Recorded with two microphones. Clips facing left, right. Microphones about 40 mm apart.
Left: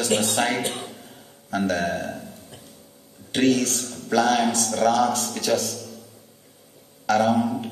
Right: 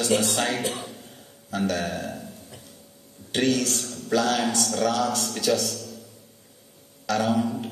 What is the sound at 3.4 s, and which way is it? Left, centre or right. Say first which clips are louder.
A man's voice: left 3 dB; left.